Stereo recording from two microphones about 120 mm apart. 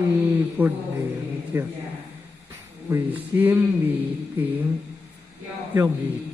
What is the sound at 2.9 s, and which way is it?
Mantra, 15° right (ahead or behind).